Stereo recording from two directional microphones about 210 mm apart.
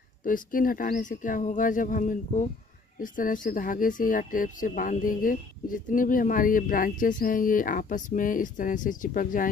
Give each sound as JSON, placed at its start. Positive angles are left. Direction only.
{"t": 0.2, "sound": "speech", "side_deg": 40}